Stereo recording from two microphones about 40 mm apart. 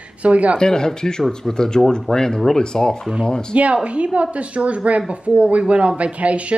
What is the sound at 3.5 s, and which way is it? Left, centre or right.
Speech, right.